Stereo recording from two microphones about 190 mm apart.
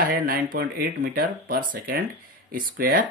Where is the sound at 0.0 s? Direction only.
50° right (ahead or behind).